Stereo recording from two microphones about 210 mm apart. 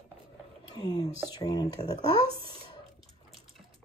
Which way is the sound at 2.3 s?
25° right (ahead or behind).